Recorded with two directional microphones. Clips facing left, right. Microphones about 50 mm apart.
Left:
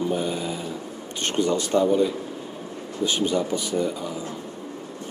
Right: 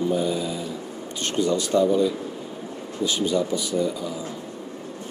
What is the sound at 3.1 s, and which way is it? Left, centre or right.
Speech, left.